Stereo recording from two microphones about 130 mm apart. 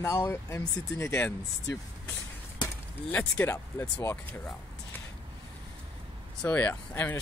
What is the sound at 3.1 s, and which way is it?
Speech, 15° left (ahead or behind).